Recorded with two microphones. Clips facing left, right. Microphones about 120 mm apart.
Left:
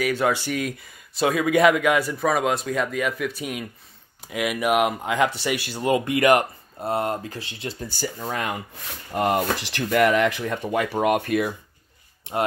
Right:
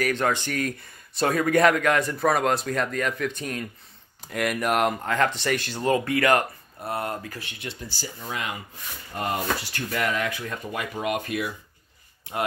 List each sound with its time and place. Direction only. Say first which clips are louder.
0.0 s speech: left 2 dB; 5° left (ahead or behind); by 7.7 s 30° left (ahead or behind)
7.9 s speech: left 7 dB; 50° left (ahead or behind)
9.1 s speech: left 5 dB; 65° left (ahead or behind)
11.0 s speech: left 6 dB; 55° left (ahead or behind)
12.3 s speech: left 4 dB; 25° left (ahead or behind)